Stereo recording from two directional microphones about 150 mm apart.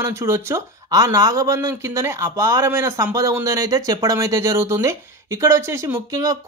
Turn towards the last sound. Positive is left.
turn(degrees=-20)  # may be behind; listen again after turning